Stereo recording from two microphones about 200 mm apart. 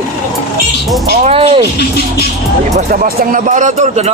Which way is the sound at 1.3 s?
30° right (ahead or behind).